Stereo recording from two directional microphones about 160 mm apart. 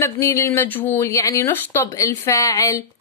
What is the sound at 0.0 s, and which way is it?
Speech, 20° left (ahead or behind).